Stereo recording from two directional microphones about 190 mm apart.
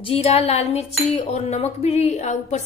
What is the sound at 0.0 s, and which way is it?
Cutlery, 30° left (ahead or behind).